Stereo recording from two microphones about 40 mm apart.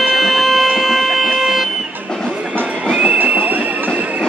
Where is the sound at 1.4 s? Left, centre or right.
Centre.